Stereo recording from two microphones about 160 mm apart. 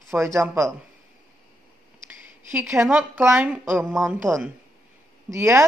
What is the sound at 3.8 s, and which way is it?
Speech, centre (ahead or behind).